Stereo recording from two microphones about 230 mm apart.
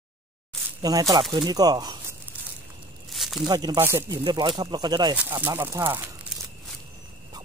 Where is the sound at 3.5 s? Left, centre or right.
Centre.